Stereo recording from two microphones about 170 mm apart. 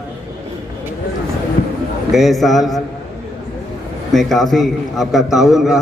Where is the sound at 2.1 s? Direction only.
Centre (ahead or behind).